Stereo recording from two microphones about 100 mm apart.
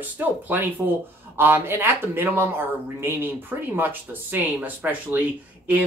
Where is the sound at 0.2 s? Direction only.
20° right (ahead or behind).